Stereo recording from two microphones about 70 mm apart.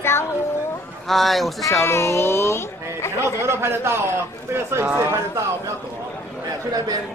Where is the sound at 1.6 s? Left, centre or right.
Left.